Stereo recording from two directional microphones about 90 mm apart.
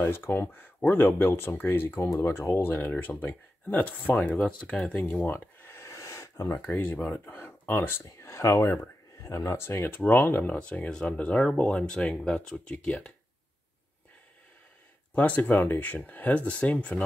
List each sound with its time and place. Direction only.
0.0 s speech: 25° left (ahead or behind)
5.2 s a sound: 20° left (ahead or behind)
6.6 s speech: 20° left (ahead or behind)
15.1 s speech: 20° left (ahead or behind)